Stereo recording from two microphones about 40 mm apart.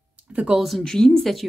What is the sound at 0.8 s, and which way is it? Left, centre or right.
Speech, centre.